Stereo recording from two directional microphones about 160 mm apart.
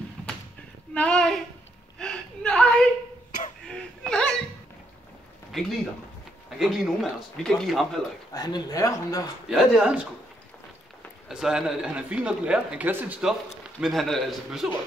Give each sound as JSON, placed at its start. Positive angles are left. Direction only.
{"t": 0.9, "sound": "a sound", "side_deg": 5}
{"t": 2.0, "sound": "chuckle", "side_deg": 5}
{"t": 3.6, "sound": "whimper", "side_deg": 5}
{"t": 5.5, "sound": "a sound", "side_deg": 0}
{"t": 6.6, "sound": "speech", "side_deg": 0}
{"t": 8.3, "sound": "speech", "side_deg": 25}
{"t": 9.5, "sound": "speech", "side_deg": -5}
{"t": 11.2, "sound": "speech", "side_deg": -5}